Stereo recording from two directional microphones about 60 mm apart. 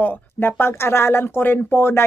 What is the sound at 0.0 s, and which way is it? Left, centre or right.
Speech, left.